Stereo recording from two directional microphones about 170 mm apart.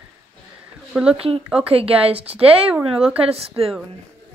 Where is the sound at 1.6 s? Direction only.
35° right (ahead or behind).